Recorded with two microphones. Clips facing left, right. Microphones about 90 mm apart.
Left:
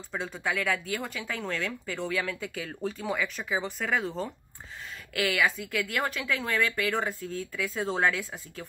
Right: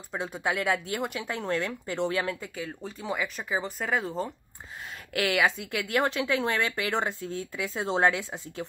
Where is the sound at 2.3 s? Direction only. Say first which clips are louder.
Left 1 dB; 5° right (ahead or behind).